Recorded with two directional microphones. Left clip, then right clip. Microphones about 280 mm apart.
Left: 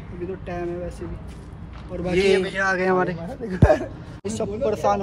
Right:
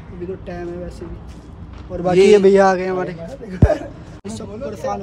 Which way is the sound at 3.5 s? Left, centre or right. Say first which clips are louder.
Even; left.